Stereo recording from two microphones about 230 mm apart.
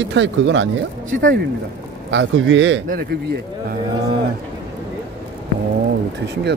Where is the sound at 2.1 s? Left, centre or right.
Right.